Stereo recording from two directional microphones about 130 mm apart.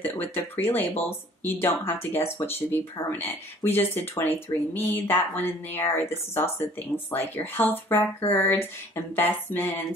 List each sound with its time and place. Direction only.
0.0 s speech: 15° left (ahead or behind)